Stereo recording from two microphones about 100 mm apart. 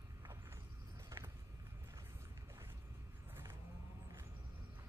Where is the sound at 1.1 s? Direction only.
30° right (ahead or behind).